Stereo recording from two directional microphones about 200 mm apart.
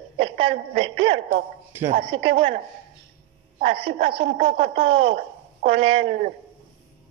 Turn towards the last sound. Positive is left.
turn(degrees=-30)  # may be behind; listen again after turning